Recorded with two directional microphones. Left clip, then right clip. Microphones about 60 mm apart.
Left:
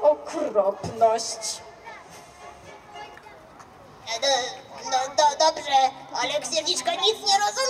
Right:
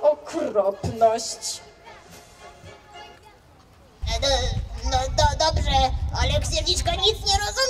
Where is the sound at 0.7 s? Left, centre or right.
Right.